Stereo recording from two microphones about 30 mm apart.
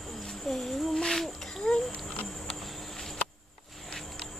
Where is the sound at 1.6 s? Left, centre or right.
Left.